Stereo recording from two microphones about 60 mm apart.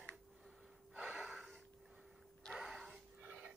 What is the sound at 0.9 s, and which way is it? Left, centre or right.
Gasp, right.